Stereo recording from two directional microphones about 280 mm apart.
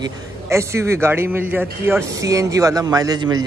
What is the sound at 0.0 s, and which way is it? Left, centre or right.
A man's voice, centre.